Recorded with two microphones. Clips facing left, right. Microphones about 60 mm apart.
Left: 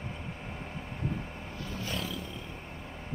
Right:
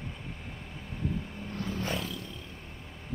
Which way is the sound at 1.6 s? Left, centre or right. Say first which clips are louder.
Right 5 dB; right.